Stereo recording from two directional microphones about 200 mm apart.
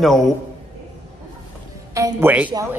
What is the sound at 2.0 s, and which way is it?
Speech, 15° right (ahead or behind).